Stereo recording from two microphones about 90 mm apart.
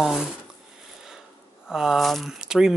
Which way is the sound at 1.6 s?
Centre (ahead or behind).